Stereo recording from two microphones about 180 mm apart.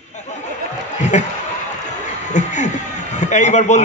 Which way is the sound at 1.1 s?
40° left (ahead or behind).